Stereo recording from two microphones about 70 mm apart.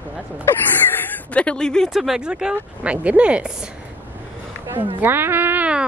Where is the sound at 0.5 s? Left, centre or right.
Left; by 1.9 s centre.